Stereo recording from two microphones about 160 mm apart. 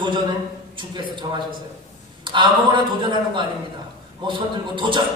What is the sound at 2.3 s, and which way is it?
A man's voice, 30° right (ahead or behind).